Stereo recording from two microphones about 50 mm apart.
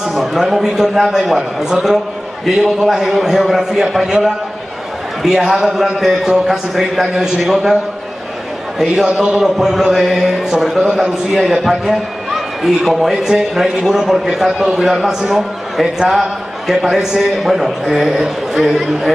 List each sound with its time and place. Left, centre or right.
0.1 s a man's voice: centre
9.4 s a man's voice: centre
13.1 s a man's voice: centre